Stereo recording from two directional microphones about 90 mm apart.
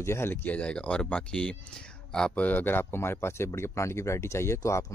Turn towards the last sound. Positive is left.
turn(degrees=30)  # may be behind; listen again after turning